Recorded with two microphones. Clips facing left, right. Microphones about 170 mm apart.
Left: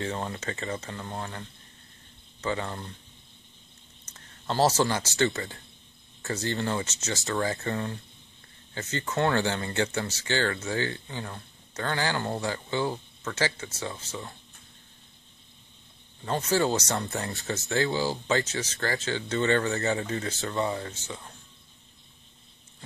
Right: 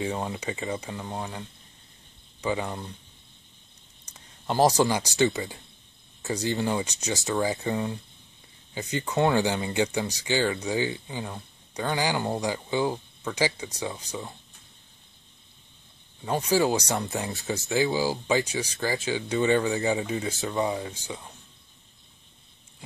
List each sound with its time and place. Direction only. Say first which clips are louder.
0.0 s speech: right 2 dB; 10° right (ahead or behind)
2.4 s speech: right 2 dB; 10° right (ahead or behind)
4.0 s speech: right 1 dB; 15° right (ahead or behind)
16.3 s speech: right 2 dB; 10° right (ahead or behind)
16.9 s speech: right 2 dB; centre (ahead or behind)
18.0 s speech: right 2 dB; 10° right (ahead or behind)